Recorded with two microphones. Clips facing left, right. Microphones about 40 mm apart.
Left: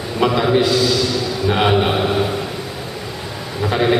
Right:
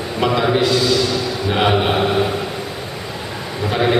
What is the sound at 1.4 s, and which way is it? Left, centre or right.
Mantra, centre.